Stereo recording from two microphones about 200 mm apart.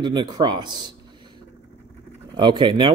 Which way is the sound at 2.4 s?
25° right (ahead or behind).